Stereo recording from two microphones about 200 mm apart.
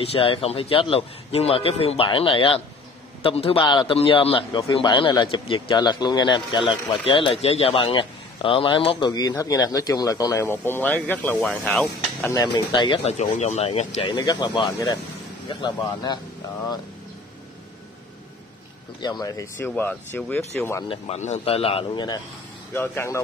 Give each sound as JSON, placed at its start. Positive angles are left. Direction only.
{"t": 0.0, "sound": "speech", "side_deg": 30}
{"t": 12.3, "sound": "speech", "side_deg": 20}
{"t": 14.1, "sound": "speech", "side_deg": 20}
{"t": 18.9, "sound": "speech", "side_deg": 20}
{"t": 20.9, "sound": "speech", "side_deg": 35}